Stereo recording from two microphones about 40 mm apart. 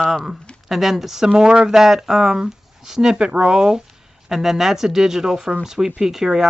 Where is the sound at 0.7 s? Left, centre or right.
Centre.